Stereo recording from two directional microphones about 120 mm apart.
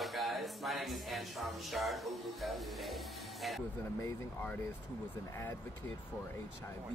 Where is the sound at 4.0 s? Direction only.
15° left (ahead or behind).